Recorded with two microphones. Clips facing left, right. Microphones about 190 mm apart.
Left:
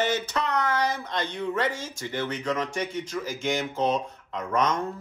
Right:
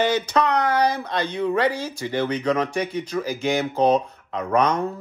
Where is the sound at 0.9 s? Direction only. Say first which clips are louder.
Right 5 dB; 70° right (ahead or behind).